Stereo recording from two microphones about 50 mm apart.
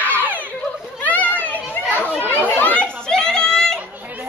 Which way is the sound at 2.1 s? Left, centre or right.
Left.